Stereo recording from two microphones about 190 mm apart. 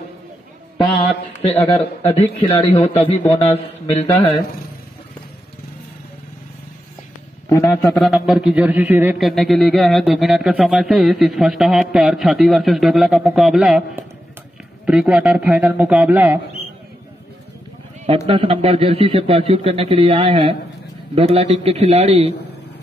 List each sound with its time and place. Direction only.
2.0 s a man's voice: 35° left (ahead or behind)
7.4 s a man's voice: 10° left (ahead or behind)
8.0 s speech: 5° right (ahead or behind)
9.3 s speech: centre (ahead or behind)
14.9 s a man's voice: 5° right (ahead or behind)
18.0 s a man's voice: 30° right (ahead or behind)